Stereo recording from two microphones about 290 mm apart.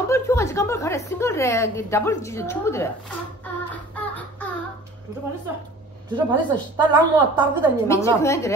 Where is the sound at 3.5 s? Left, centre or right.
Centre.